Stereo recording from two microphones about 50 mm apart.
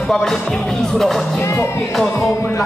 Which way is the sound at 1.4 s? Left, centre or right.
Left.